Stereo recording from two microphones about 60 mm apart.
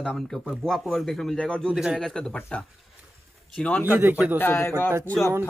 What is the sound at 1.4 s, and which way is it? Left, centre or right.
Speech, centre.